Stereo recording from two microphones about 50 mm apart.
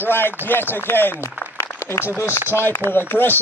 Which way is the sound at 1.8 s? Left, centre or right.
Left.